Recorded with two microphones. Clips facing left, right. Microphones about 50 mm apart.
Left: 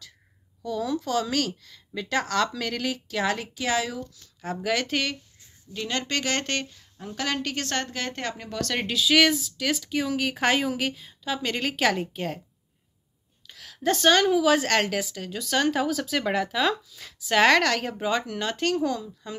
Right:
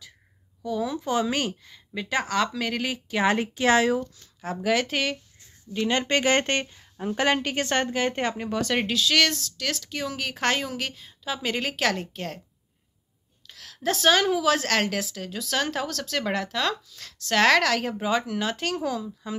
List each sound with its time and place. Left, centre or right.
0.7 s speech: centre
3.2 s speech: right
3.5 s speech: right
4.4 s a woman's voice: centre
5.7 s speech: centre
8.8 s a woman's voice: centre
13.5 s a woman's voice: centre